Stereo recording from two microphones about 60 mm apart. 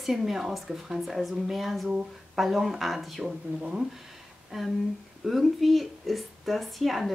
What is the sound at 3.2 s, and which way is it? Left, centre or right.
Speech, centre.